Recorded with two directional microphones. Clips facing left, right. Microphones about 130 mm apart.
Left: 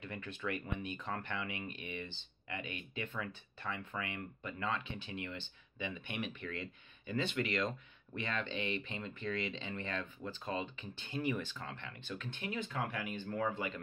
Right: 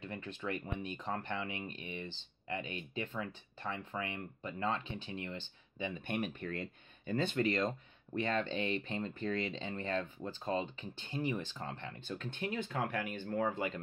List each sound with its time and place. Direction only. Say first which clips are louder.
0.0 s speech: right 1 dB; 30° right (ahead or behind)